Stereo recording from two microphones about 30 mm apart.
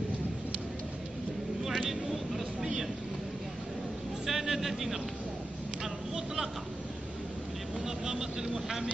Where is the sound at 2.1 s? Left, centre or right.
Centre.